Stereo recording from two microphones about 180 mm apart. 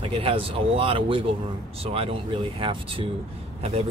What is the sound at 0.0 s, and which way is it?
Speech, 30° right (ahead or behind).